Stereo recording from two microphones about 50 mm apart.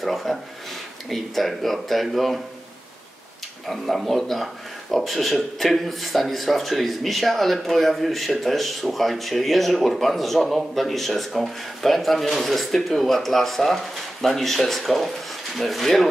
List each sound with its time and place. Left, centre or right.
0.0 s speech: centre
3.6 s speech: centre